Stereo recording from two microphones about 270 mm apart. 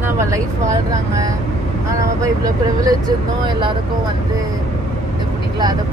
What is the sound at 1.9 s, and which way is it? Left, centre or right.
Speech, centre.